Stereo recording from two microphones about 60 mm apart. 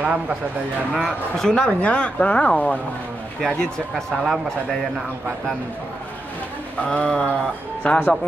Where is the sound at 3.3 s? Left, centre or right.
Centre.